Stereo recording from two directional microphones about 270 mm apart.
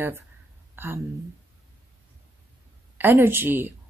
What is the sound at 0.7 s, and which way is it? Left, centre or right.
Speech, centre.